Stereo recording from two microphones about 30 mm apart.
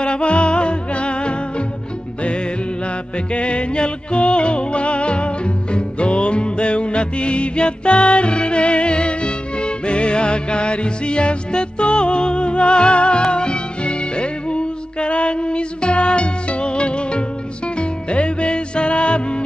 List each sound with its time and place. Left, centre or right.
0.0 s music: left
3.3 s music: left